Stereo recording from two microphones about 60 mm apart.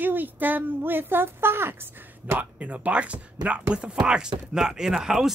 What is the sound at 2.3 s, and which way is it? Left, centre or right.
Speech, right.